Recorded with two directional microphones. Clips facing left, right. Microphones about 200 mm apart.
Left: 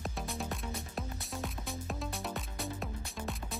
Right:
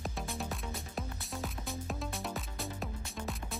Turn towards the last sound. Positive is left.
turn(degrees=0)  # may be behind; listen again after turning